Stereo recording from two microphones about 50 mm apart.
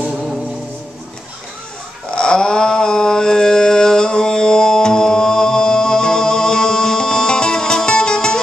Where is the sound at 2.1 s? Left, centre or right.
Centre.